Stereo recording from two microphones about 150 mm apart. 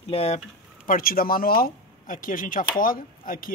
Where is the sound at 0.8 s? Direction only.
70° left (ahead or behind).